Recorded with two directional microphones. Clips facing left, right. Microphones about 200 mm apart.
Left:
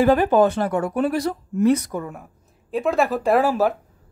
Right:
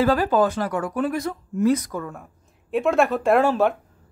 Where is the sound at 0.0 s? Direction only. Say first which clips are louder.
Left 3 dB; 20° left (ahead or behind).